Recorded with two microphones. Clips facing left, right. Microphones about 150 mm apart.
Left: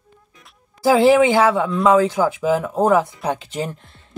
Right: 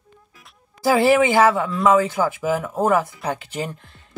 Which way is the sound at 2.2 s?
20° left (ahead or behind).